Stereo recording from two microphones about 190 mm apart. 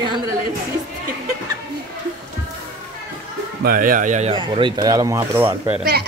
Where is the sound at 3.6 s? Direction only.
45° right (ahead or behind).